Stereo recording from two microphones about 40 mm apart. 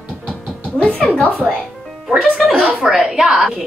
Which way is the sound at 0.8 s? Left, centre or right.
Left.